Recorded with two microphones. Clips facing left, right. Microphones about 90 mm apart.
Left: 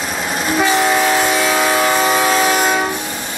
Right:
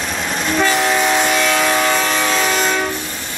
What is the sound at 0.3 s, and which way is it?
Train, 5° left (ahead or behind).